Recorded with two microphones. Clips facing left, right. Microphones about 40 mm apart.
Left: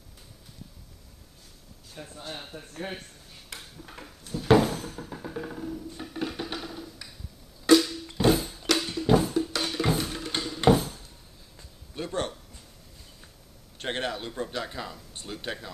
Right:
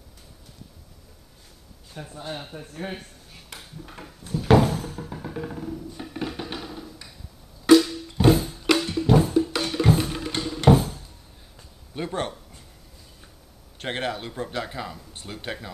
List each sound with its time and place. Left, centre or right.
2.0 s speech: centre
4.3 s music: centre
10.0 s music: centre
10.7 s a sound: centre
11.5 s a sound: centre
13.7 s speech: centre